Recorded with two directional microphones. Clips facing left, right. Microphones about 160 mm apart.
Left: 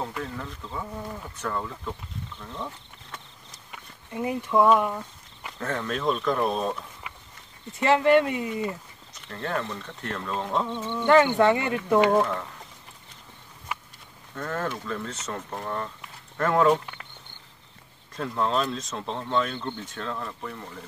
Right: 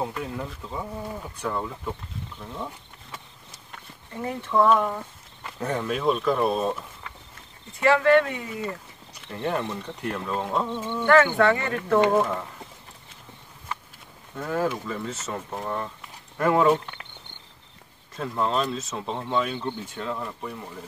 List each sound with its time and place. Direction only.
0.0 s speech: 15° right (ahead or behind)
2.5 s insect: 5° right (ahead or behind)
3.7 s speech: 10° left (ahead or behind)
5.5 s speech: 15° right (ahead or behind)
7.8 s speech: 20° left (ahead or behind)
9.1 s speech: 15° right (ahead or behind)
11.1 s speech: 20° left (ahead or behind)
12.1 s speech: 5° right (ahead or behind)
14.3 s speech: 10° right (ahead or behind)
18.1 s speech: 5° right (ahead or behind)